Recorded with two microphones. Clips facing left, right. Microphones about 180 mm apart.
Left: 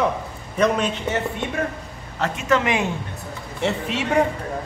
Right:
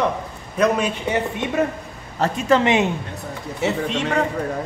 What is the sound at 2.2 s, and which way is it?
Speech, 35° right (ahead or behind).